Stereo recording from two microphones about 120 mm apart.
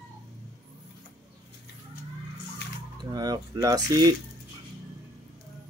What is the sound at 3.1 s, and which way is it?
Speech, 35° right (ahead or behind).